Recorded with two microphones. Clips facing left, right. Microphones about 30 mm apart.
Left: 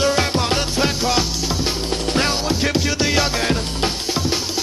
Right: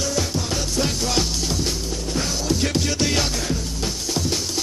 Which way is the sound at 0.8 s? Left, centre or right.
Left.